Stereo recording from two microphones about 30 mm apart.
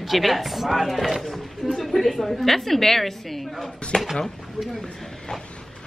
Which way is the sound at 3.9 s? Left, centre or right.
Left.